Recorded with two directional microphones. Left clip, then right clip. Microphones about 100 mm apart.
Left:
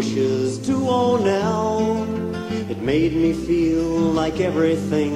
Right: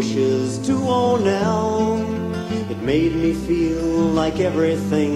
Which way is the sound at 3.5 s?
20° left (ahead or behind).